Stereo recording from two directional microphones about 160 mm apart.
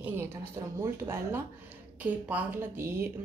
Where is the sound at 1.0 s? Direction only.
15° right (ahead or behind).